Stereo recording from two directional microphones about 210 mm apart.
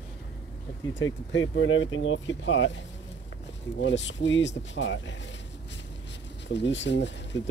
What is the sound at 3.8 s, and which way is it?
Speech, 60° left (ahead or behind).